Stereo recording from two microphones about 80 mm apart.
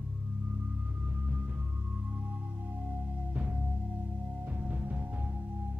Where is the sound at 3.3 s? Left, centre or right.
Centre.